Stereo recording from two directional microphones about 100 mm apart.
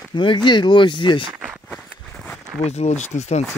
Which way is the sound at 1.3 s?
15° right (ahead or behind).